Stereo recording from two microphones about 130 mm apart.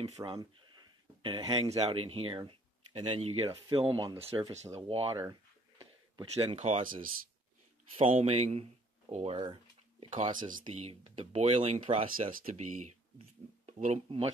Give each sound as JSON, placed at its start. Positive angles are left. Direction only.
{"t": 0.2, "sound": "speech", "side_deg": -40}
{"t": 3.7, "sound": "speech", "side_deg": -45}
{"t": 4.3, "sound": "speech", "side_deg": -30}
{"t": 4.7, "sound": "speech", "side_deg": -50}
{"t": 5.3, "sound": "a sound", "side_deg": -35}
{"t": 6.3, "sound": "speech", "side_deg": -55}
{"t": 7.9, "sound": "speech", "side_deg": -50}
{"t": 10.1, "sound": "speech", "side_deg": -75}
{"t": 10.7, "sound": "speech", "side_deg": -55}
{"t": 11.9, "sound": "speech", "side_deg": -70}